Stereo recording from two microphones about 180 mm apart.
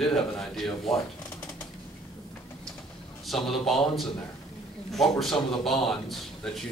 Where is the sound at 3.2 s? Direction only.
Centre (ahead or behind).